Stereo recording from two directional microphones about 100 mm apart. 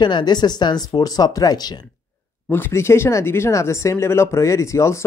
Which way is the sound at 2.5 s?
25° left (ahead or behind).